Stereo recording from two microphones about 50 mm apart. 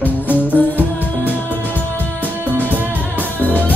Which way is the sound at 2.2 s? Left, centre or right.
Right.